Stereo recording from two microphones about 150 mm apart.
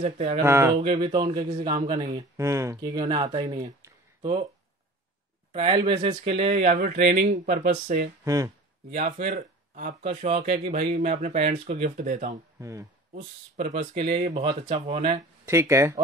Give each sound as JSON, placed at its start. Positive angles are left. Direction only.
{"t": 0.0, "sound": "speech", "side_deg": -40}
{"t": 0.4, "sound": "speech", "side_deg": -15}
{"t": 0.9, "sound": "a man's voice", "side_deg": -30}
{"t": 5.5, "sound": "speech", "side_deg": -40}
{"t": 7.0, "sound": "speech", "side_deg": -65}
{"t": 8.2, "sound": "speech", "side_deg": -25}
{"t": 8.9, "sound": "speech", "side_deg": -55}
{"t": 10.1, "sound": "speech", "side_deg": -45}
{"t": 12.5, "sound": "speech", "side_deg": -20}
{"t": 13.1, "sound": "speech", "side_deg": -55}
{"t": 14.4, "sound": "speech", "side_deg": -30}
{"t": 15.4, "sound": "a man's voice", "side_deg": -20}